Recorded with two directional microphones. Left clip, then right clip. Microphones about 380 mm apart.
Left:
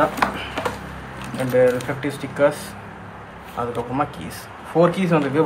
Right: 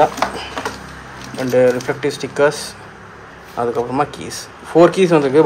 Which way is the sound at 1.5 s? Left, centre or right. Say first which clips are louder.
Right 4 dB; centre.